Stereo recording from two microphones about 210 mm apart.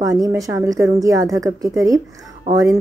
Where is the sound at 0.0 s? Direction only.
15° right (ahead or behind).